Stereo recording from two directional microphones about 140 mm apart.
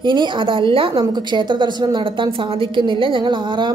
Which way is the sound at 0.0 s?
35° right (ahead or behind).